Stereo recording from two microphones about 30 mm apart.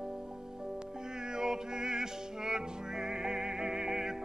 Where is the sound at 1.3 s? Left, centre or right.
Right.